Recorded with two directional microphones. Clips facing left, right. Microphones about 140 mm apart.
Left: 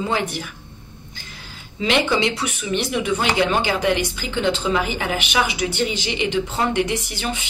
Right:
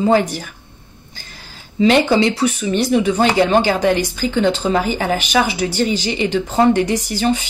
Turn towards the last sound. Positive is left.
turn(degrees=-35)  # may be behind; listen again after turning